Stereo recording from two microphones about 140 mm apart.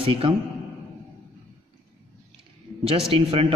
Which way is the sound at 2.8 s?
45° right (ahead or behind).